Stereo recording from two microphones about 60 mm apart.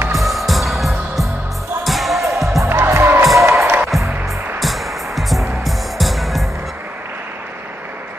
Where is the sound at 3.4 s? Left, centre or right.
Right.